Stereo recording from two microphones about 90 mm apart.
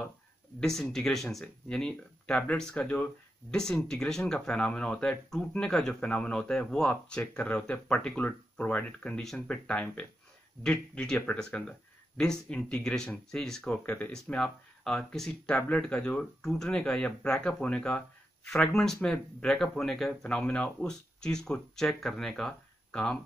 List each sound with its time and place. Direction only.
0.6 s speech: 5° left (ahead or behind)
9.7 s speech: 15° left (ahead or behind)
13.8 s speech: 20° left (ahead or behind)
14.1 s speech: 5° left (ahead or behind)